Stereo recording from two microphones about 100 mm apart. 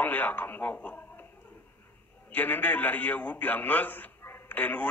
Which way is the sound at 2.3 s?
15° left (ahead or behind).